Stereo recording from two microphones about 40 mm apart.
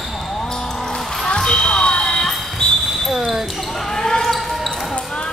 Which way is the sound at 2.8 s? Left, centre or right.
Centre.